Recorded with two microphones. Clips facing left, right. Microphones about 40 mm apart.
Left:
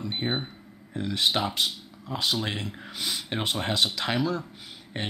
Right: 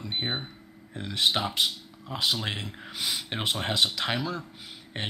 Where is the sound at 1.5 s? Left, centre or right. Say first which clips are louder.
Right 1 dB; centre.